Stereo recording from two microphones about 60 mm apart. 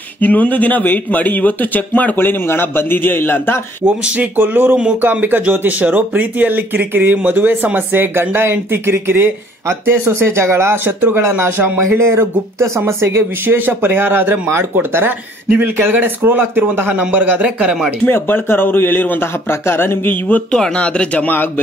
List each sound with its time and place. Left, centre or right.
0.2 s a man's voice: left
3.8 s a man's voice: centre
4.4 s speech: right
16.9 s a man's voice: right
18.0 s a man's voice: left
20.5 s a man's voice: centre